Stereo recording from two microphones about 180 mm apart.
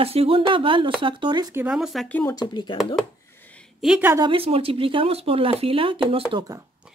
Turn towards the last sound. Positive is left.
turn(degrees=-30)  # may be behind; listen again after turning